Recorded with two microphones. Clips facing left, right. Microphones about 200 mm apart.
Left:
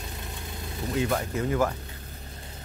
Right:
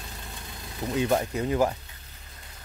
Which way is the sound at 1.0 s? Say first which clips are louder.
Right 2 dB; 25° right (ahead or behind).